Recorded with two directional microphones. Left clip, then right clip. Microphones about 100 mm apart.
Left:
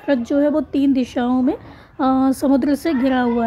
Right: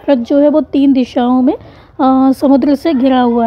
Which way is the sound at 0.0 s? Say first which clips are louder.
Right 8 dB; 35° right (ahead or behind).